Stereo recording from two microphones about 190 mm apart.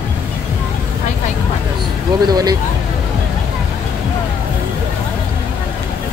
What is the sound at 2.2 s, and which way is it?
Speech, 20° right (ahead or behind).